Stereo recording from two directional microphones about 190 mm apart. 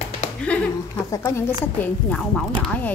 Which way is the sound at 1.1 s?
15° left (ahead or behind).